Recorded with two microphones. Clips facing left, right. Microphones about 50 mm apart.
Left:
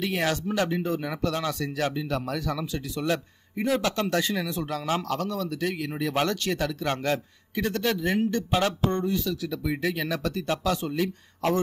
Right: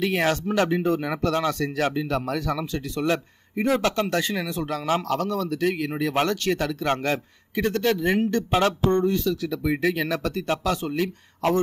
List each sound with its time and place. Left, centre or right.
0.0 s speech: right
8.3 s speech: right